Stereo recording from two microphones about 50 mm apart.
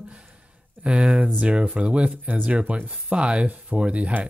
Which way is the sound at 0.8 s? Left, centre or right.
Right.